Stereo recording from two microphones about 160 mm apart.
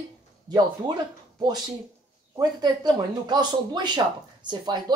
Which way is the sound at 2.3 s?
25° right (ahead or behind).